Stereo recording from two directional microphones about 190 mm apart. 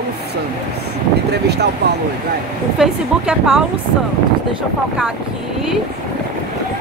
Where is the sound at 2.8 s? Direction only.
Centre (ahead or behind).